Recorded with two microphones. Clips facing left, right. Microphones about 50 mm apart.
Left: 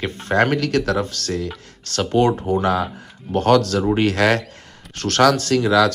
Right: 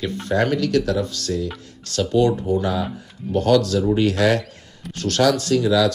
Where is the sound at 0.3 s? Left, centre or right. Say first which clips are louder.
Left 2 dB; left.